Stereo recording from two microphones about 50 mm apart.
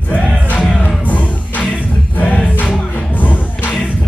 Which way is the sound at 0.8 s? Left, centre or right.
Left.